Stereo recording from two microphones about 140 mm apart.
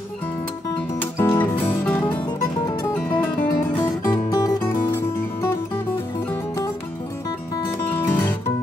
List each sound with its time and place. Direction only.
1.1 s music: 20° left (ahead or behind)
2.8 s music: 15° left (ahead or behind)
7.9 s music: 15° left (ahead or behind)